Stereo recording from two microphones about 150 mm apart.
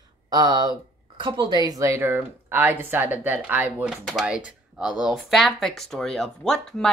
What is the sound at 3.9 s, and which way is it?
Speech, centre (ahead or behind).